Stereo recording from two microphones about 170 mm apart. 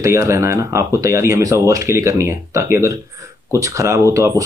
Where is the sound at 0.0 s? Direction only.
15° right (ahead or behind).